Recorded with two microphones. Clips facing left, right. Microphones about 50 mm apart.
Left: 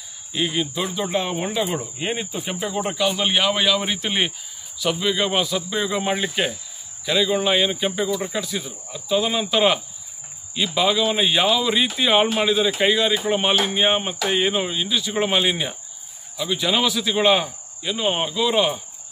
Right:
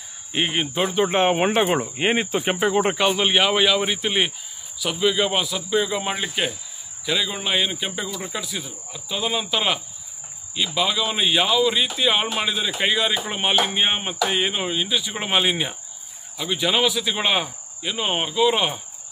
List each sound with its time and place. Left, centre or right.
0.3 s speech: right
1.3 s speech: right
2.5 s speech: right
3.2 s speech: centre